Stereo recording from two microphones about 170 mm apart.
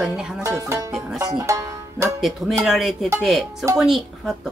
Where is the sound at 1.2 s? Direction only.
20° right (ahead or behind).